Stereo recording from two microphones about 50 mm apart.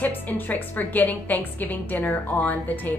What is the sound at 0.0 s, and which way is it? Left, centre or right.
A woman's voice, left.